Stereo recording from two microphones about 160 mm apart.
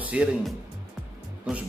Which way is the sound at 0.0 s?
10° right (ahead or behind).